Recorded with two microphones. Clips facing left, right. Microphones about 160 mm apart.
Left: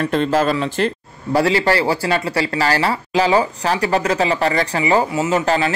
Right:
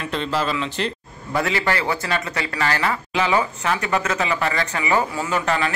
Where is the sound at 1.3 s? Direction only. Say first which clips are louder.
Left 6 dB; 35° left (ahead or behind).